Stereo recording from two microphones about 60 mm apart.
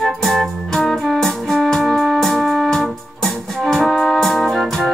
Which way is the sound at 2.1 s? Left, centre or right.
Centre.